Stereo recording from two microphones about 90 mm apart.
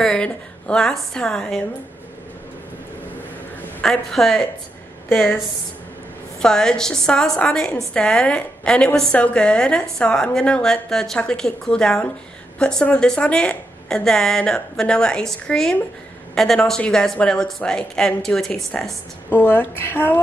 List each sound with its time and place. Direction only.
0.0 s a woman's voice: 10° left (ahead or behind)
3.8 s speech: 5° left (ahead or behind)
6.4 s a woman's voice: 5° left (ahead or behind)
19.3 s speech: 25° left (ahead or behind)